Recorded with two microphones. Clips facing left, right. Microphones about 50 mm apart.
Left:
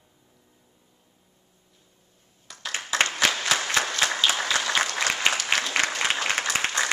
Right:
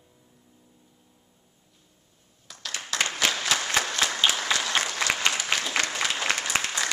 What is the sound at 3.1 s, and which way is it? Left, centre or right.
Applause, centre.